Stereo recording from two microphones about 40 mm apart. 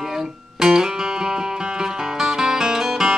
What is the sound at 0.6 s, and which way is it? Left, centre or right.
Music, centre.